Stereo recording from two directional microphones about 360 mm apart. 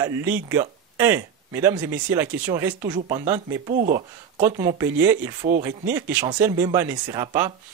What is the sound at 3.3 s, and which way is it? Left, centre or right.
Speech, centre.